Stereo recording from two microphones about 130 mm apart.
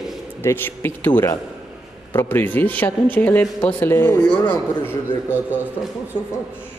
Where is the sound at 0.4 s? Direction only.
20° left (ahead or behind).